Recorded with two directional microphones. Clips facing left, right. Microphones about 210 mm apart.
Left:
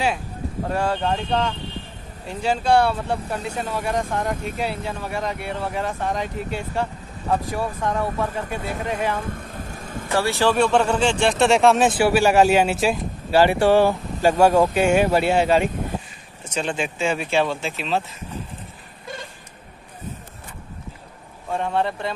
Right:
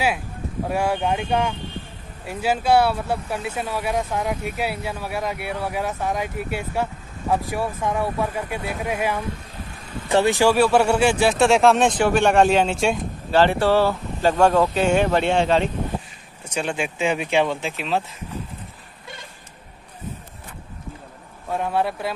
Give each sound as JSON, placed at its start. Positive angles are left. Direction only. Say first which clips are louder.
{"t": 0.7, "sound": "speech", "louder": "right 1 dB", "side_deg": -10}
{"t": 9.2, "sound": "vehicle", "louder": "even", "side_deg": 50}
{"t": 10.0, "sound": "speech", "louder": "right 3 dB", "side_deg": -20}
{"t": 16.4, "sound": "speech", "louder": "even", "side_deg": -10}
{"t": 21.5, "sound": "speech", "louder": "even", "side_deg": -5}